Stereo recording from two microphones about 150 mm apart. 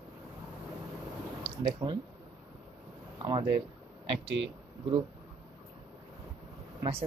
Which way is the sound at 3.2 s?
30° right (ahead or behind).